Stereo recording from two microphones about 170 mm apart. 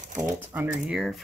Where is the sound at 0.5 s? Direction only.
10° right (ahead or behind).